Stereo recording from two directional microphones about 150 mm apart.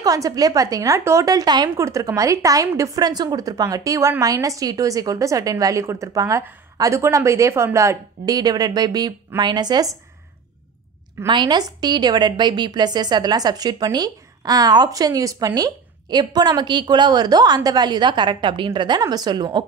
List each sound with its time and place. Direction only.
0.0 s a woman's voice: 25° right (ahead or behind)
11.2 s a woman's voice: 30° right (ahead or behind)